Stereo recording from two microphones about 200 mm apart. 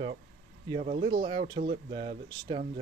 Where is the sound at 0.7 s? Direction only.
35° right (ahead or behind).